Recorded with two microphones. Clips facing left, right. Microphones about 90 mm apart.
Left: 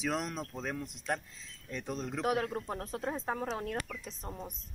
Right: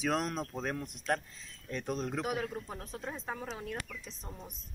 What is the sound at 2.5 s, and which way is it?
Speech, 45° left (ahead or behind).